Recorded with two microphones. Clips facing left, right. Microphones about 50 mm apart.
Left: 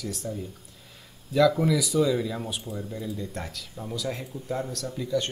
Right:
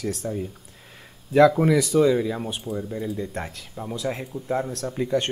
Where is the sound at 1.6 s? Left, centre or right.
Right.